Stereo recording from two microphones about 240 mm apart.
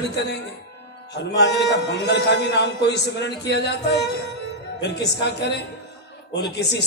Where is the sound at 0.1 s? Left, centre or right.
Left.